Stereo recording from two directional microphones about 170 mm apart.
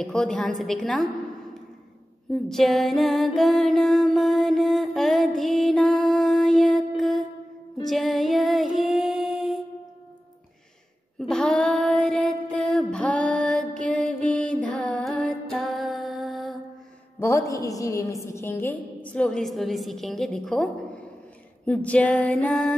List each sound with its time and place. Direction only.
0.0 s a woman's voice: 5° left (ahead or behind)
2.4 s music: centre (ahead or behind)
11.1 s child singing: 5° left (ahead or behind)
14.0 s music: 5° left (ahead or behind)
17.2 s a woman's voice: 15° left (ahead or behind)